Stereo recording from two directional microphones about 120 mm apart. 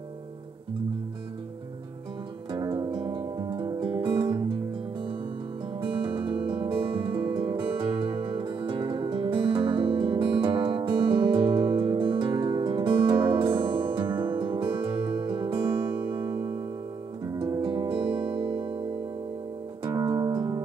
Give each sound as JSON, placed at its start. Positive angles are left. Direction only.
{"t": 2.5, "sound": "music", "side_deg": -35}
{"t": 5.8, "sound": "music", "side_deg": -45}
{"t": 16.2, "sound": "music", "side_deg": -20}
{"t": 17.6, "sound": "music", "side_deg": -40}
{"t": 19.8, "sound": "music", "side_deg": -30}